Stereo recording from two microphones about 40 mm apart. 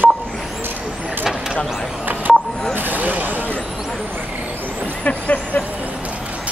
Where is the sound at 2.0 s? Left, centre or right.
Right.